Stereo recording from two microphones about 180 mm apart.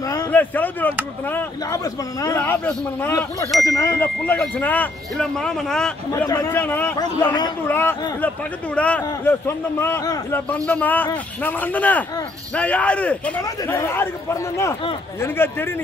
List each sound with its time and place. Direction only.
0.1 s speech: 10° left (ahead or behind)
2.2 s a man's voice: 15° left (ahead or behind)
6.2 s a man's voice: 15° left (ahead or behind)
7.0 s speech: 25° left (ahead or behind)
7.6 s a man's voice: 10° left (ahead or behind)